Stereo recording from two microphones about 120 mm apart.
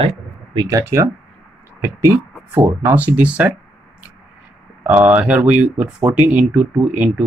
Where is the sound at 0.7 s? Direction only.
25° right (ahead or behind).